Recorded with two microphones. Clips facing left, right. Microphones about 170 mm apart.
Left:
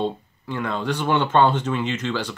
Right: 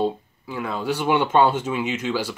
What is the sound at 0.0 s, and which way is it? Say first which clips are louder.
Speech: right 2 dB; 5° right (ahead or behind).